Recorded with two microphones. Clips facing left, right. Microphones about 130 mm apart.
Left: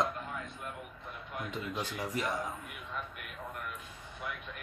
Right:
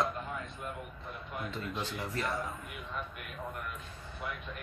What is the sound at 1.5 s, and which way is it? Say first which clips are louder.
Speech: left 2 dB; 10° left (ahead or behind).